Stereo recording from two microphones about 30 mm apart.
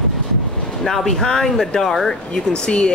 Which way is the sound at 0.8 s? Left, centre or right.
Centre.